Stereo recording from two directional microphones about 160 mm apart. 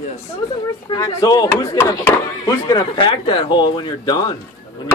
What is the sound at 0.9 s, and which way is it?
A man's voice, 25° left (ahead or behind).